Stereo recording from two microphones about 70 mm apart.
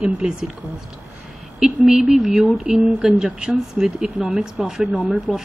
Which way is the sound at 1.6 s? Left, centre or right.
Centre.